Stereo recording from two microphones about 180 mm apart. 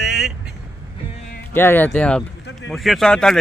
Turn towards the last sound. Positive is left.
turn(degrees=5)  # may be behind; listen again after turning